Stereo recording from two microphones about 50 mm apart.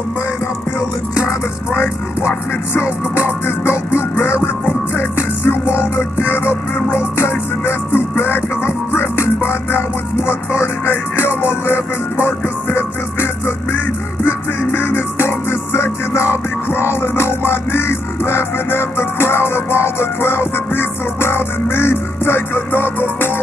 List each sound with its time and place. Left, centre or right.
1.2 s music: left